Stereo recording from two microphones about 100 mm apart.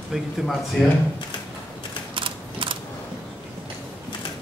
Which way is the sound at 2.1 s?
60° right (ahead or behind).